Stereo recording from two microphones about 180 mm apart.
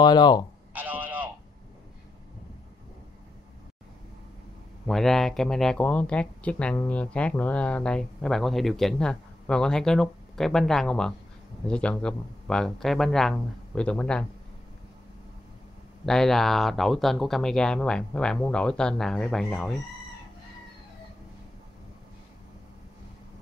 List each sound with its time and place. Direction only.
0.0 s speech: 25° left (ahead or behind)
0.7 s a sound: 10° right (ahead or behind)
4.8 s speech: 5° left (ahead or behind)
16.1 s speech: 5° left (ahead or behind)